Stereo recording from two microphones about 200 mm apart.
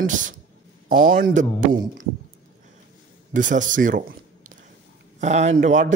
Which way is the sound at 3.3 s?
40° right (ahead or behind).